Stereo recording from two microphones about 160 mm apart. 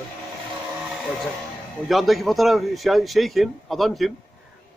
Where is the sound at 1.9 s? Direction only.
Centre (ahead or behind).